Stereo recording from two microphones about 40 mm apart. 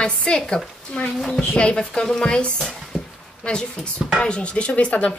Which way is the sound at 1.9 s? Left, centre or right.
Centre.